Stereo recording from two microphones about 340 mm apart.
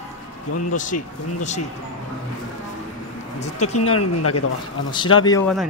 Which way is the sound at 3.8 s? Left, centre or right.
Left.